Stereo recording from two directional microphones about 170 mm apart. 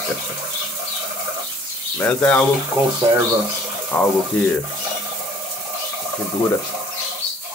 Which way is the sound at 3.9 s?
5° left (ahead or behind).